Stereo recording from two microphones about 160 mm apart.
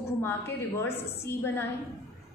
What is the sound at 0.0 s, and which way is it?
A woman's voice, 15° left (ahead or behind).